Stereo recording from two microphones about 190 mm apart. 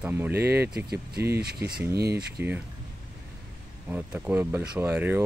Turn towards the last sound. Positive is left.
turn(degrees=-10)  # may be behind; listen again after turning